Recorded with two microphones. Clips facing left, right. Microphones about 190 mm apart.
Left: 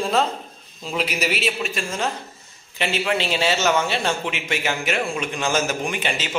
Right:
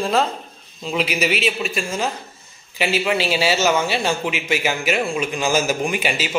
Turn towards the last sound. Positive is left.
turn(degrees=-10)  # may be behind; listen again after turning